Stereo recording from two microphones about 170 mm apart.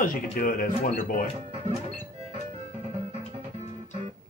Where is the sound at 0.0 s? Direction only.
55° left (ahead or behind).